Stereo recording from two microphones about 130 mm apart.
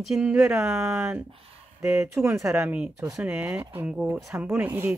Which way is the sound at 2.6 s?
10° right (ahead or behind).